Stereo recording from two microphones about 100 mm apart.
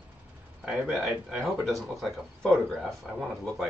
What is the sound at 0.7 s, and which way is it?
Speech, 5° right (ahead or behind).